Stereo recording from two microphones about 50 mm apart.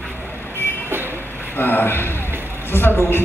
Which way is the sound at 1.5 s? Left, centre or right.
Left.